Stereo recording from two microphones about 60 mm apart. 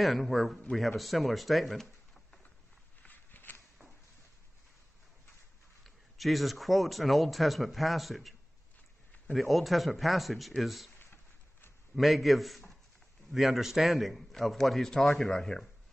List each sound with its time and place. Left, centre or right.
0.0 s a man's voice: centre
3.0 s a sound: left
5.9 s a man's voice: centre
11.9 s a man's voice: centre